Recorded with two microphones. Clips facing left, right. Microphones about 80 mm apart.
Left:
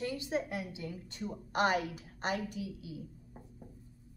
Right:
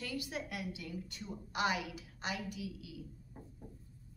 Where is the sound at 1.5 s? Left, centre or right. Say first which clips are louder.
Left 5 dB; left.